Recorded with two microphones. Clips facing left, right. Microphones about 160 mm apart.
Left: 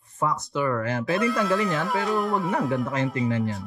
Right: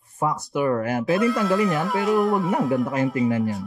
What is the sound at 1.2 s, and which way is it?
Speech, centre (ahead or behind).